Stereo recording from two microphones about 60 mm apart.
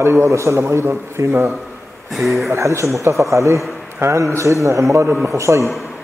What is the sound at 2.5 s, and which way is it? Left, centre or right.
A man's voice, right.